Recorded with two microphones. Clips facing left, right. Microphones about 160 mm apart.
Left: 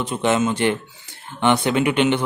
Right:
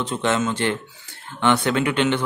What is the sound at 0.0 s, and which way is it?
Speech, 10° left (ahead or behind).